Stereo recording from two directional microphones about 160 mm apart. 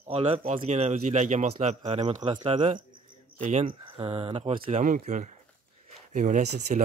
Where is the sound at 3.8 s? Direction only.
35° right (ahead or behind); by 6.8 s 50° right (ahead or behind).